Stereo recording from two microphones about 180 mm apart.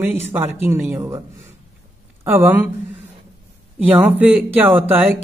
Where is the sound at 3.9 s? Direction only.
10° right (ahead or behind).